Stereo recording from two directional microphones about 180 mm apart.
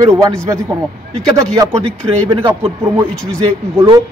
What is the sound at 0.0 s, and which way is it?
Speech, 15° right (ahead or behind).